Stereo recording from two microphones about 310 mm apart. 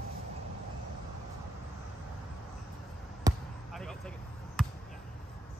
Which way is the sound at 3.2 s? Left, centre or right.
Centre.